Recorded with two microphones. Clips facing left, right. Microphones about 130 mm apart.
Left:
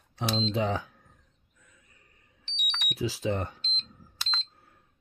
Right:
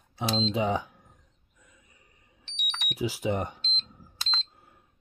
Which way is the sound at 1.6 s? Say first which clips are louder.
Right 2 dB; 15° right (ahead or behind).